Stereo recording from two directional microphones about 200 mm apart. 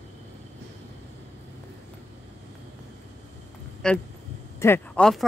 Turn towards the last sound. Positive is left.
turn(degrees=0)  # may be behind; listen again after turning